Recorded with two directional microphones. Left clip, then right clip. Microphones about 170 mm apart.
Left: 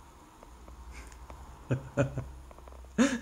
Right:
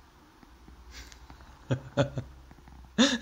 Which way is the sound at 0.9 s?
5° right (ahead or behind).